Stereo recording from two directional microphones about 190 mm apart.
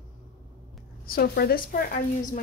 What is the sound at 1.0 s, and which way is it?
A woman's voice, 50° left (ahead or behind).